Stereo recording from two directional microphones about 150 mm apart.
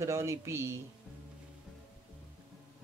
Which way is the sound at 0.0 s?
20° right (ahead or behind).